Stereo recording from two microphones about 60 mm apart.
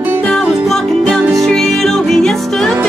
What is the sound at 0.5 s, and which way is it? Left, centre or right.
Music, centre.